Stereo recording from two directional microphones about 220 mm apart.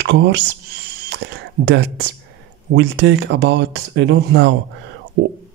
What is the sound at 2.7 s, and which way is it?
Speech, 55° right (ahead or behind).